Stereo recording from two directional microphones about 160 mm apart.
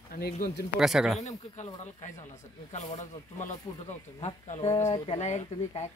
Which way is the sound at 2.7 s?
45° left (ahead or behind).